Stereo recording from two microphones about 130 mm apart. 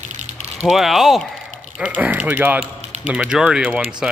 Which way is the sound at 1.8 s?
10° right (ahead or behind).